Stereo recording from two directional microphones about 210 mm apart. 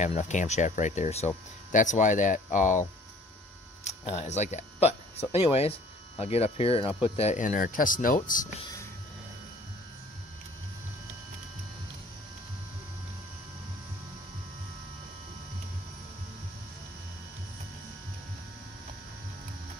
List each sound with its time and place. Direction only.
0.0 s speech: 35° left (ahead or behind)